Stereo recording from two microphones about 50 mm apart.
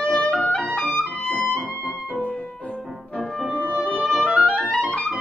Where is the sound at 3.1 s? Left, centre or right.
Centre.